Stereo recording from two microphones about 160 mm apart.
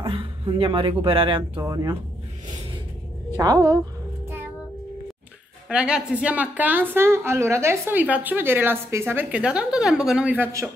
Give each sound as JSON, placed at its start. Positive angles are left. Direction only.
{"t": 0.0, "sound": "speech", "side_deg": -35}
{"t": 1.6, "sound": "a woman's voice", "side_deg": -20}
{"t": 3.3, "sound": "a woman's voice", "side_deg": -25}
{"t": 5.7, "sound": "a woman's voice", "side_deg": -5}